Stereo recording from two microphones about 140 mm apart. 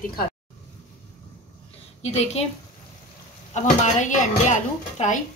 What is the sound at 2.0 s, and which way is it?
Speech, 50° left (ahead or behind).